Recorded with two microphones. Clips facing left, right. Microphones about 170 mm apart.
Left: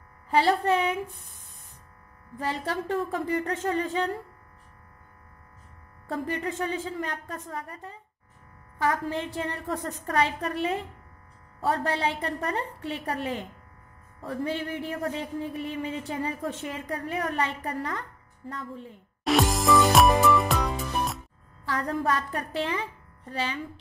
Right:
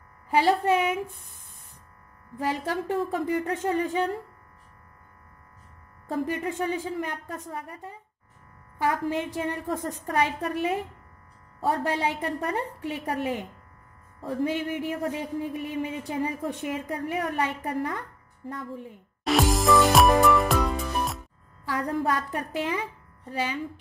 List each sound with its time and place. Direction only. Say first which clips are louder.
0.3 s speech: right 1 dB; 15° right (ahead or behind)
2.3 s speech: right 2 dB; 10° right (ahead or behind)
6.0 s speech: right 2 dB; 15° right (ahead or behind)
19.2 s music: right 1 dB; centre (ahead or behind)
21.7 s speech: right 1 dB; 15° right (ahead or behind)